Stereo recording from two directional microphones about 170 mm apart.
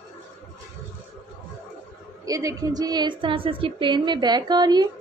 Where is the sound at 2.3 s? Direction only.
20° right (ahead or behind).